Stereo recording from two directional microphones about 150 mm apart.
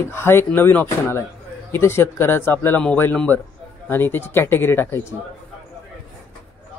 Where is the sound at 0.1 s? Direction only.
15° left (ahead or behind).